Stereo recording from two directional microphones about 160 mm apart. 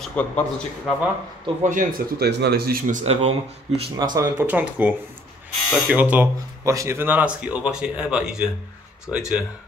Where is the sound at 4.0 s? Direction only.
25° right (ahead or behind).